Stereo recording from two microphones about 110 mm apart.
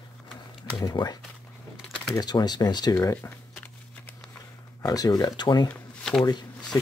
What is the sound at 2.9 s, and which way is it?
Speech, 25° left (ahead or behind).